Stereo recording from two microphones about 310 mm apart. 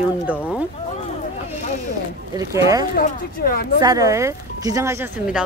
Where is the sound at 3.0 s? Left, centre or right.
Left.